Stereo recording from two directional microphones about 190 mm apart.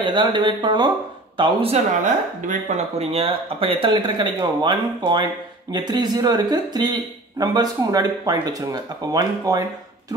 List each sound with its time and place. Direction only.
0.0 s speech: 25° right (ahead or behind)